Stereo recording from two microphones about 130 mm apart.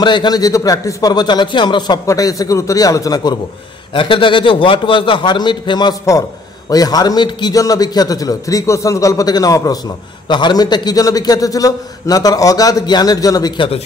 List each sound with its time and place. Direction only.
0.0 s a man's voice: 35° left (ahead or behind)
3.9 s a man's voice: 40° left (ahead or behind)